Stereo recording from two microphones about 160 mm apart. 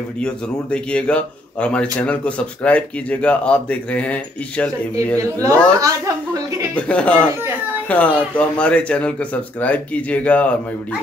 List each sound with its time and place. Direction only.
0.2 s a man's voice: 5° left (ahead or behind)
4.9 s speech: 20° right (ahead or behind)
6.7 s a man's voice: 10° left (ahead or behind)